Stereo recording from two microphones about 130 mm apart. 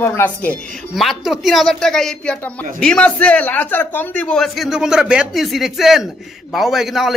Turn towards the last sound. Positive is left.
turn(degrees=0)  # may be behind; listen again after turning